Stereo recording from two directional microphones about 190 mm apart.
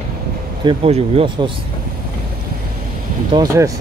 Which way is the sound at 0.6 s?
30° right (ahead or behind).